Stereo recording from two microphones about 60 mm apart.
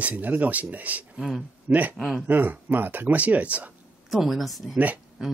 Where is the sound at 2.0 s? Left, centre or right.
Centre.